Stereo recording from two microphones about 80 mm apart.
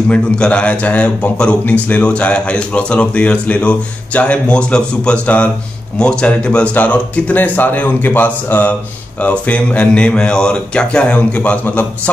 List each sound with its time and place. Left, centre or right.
0.1 s a man's voice: centre